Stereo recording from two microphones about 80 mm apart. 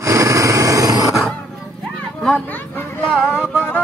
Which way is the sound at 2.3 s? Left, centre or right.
Left.